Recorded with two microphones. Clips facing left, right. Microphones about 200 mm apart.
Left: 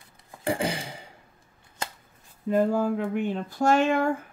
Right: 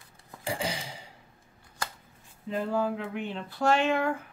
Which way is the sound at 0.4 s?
55° left (ahead or behind).